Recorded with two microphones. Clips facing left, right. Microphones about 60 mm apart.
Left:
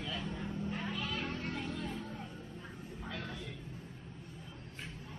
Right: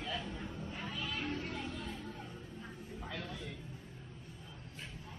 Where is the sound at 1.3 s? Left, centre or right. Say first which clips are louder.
Left 1 dB; left.